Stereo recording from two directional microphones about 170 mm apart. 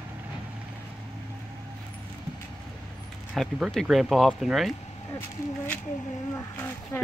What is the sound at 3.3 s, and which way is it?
Speech, centre (ahead or behind).